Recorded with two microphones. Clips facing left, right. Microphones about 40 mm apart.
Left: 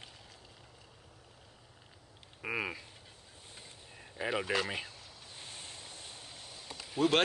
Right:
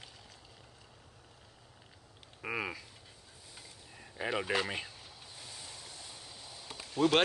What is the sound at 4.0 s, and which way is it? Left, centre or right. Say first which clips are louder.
Speech: even; centre.